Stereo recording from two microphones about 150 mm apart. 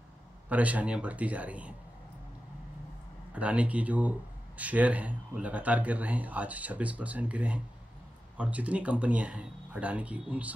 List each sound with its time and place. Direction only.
0.5 s speech: 10° right (ahead or behind)
3.3 s speech: 10° right (ahead or behind)